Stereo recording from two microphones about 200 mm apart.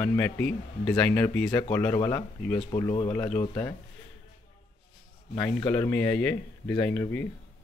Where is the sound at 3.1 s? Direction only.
10° left (ahead or behind).